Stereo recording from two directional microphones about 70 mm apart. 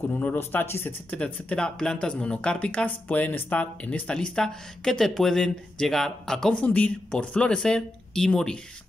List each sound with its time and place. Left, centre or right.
0.2 s speech: left
1.1 s speech: centre
6.6 s speech: left